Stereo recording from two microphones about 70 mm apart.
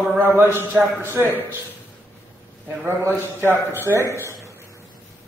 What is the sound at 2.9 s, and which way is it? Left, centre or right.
Speech, right.